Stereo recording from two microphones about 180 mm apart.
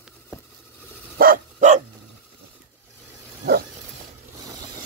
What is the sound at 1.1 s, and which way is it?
Dog, 50° right (ahead or behind).